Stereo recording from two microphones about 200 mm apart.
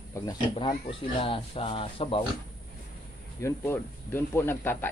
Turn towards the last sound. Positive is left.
turn(degrees=10)  # may be behind; listen again after turning